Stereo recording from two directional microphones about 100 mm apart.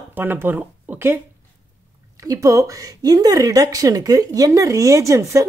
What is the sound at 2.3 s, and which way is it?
Speech, 30° right (ahead or behind).